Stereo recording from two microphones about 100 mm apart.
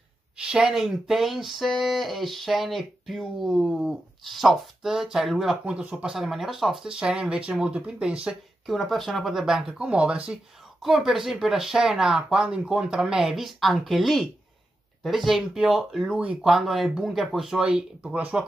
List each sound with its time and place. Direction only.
0.4 s speech: 10° right (ahead or behind)